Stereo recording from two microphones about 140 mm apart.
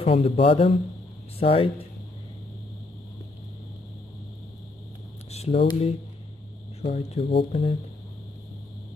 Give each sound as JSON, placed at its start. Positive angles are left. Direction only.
{"t": 0.0, "sound": "speech", "side_deg": 45}
{"t": 5.3, "sound": "speech", "side_deg": 45}